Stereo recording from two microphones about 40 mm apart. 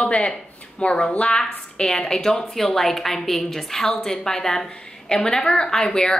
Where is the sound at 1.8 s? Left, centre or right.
Centre.